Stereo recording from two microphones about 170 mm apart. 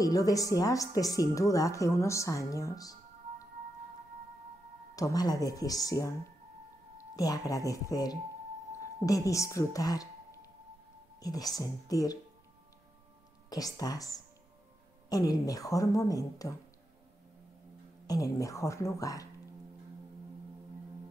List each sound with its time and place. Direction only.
0.0 s a woman's voice: 20° left (ahead or behind)
4.9 s a woman's voice: 20° left (ahead or behind)
7.2 s a woman's voice: 20° left (ahead or behind)
11.1 s a woman's voice: 20° left (ahead or behind)
13.5 s a woman's voice: 20° left (ahead or behind)
18.0 s a woman's voice: 20° left (ahead or behind)